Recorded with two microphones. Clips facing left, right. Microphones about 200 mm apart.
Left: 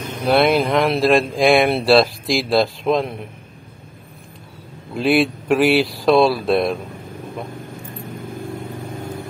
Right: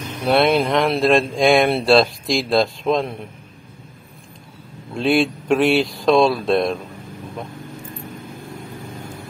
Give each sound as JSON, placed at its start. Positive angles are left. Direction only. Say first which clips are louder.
{"t": 0.2, "sound": "speech", "louder": "left 1 dB", "side_deg": 0}
{"t": 4.9, "sound": "speech", "louder": "left 1 dB", "side_deg": 0}